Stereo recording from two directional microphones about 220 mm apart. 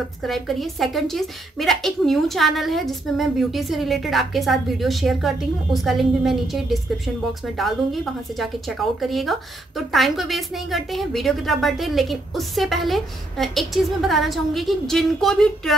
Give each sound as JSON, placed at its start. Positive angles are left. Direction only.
{"t": 0.2, "sound": "a woman's voice", "side_deg": 0}